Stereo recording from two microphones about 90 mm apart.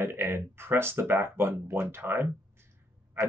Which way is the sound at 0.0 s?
25° right (ahead or behind).